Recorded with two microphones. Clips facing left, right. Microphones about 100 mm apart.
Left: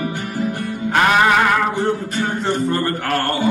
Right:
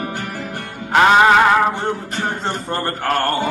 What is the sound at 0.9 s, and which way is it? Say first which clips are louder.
Music: right 3 dB; 25° right (ahead or behind).